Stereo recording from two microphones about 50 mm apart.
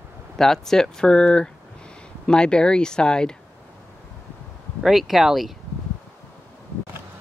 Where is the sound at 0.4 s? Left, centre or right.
Centre.